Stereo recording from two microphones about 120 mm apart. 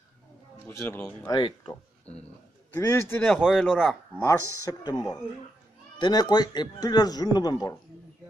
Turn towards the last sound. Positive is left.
turn(degrees=35)  # may be behind; listen again after turning